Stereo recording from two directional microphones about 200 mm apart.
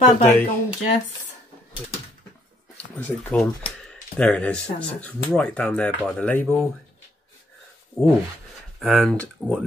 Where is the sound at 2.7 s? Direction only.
10° left (ahead or behind).